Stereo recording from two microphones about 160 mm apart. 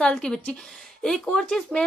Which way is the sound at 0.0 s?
5° left (ahead or behind).